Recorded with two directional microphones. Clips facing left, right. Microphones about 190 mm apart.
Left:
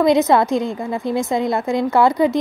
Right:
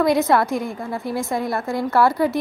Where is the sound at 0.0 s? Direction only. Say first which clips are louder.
Left 3 dB; 20° left (ahead or behind).